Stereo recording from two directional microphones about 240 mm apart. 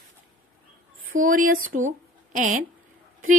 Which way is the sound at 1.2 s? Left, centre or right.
Right.